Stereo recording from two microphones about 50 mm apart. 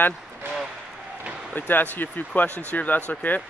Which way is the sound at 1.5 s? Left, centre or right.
Left.